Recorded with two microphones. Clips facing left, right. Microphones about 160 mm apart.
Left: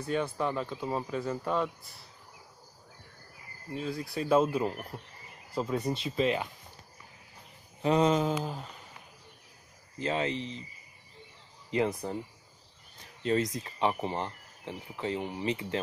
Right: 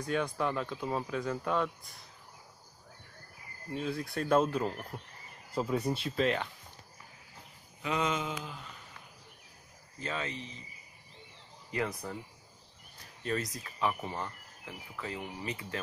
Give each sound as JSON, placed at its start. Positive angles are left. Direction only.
{"t": 0.0, "sound": "speech", "side_deg": 5}
{"t": 3.7, "sound": "speech", "side_deg": 0}
{"t": 7.8, "sound": "a sound", "side_deg": 35}
{"t": 9.9, "sound": "speech", "side_deg": 30}
{"t": 11.7, "sound": "speech", "side_deg": 25}
{"t": 13.2, "sound": "speech", "side_deg": 25}